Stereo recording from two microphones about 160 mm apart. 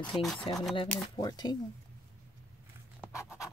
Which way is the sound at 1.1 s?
25° left (ahead or behind).